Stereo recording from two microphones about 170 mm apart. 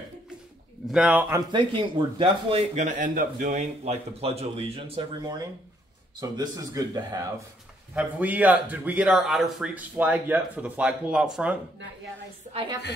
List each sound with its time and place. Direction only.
0.8 s speech: 5° right (ahead or behind)
1.3 s speech: 30° right (ahead or behind)
7.9 s a man's voice: 10° right (ahead or behind)